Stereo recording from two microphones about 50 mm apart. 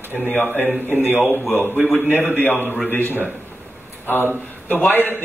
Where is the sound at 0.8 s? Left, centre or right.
Right.